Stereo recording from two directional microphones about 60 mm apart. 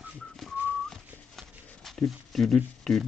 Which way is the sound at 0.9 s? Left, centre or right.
Centre.